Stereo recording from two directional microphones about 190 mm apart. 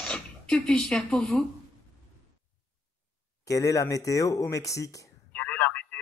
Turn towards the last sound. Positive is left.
turn(degrees=5)  # may be behind; listen again after turning